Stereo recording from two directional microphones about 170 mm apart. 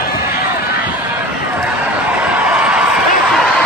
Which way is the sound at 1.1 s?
10° right (ahead or behind).